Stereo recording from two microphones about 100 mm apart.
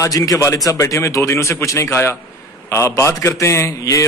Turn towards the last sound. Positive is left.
turn(degrees=35)  # may be behind; listen again after turning